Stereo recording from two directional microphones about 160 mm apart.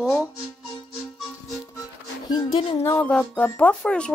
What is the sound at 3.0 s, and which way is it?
Speech, 5° left (ahead or behind).